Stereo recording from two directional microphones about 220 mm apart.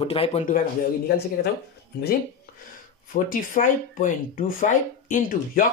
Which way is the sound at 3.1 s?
35° left (ahead or behind).